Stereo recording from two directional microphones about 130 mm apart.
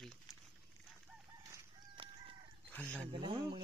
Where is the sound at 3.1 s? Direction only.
40° right (ahead or behind).